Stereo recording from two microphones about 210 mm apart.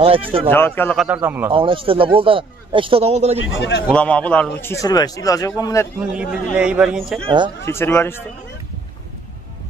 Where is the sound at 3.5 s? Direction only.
55° left (ahead or behind).